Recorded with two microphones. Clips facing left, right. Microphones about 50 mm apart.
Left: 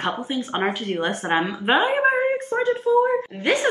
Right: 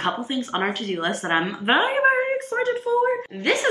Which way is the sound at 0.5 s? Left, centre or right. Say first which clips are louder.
Left 1 dB; centre.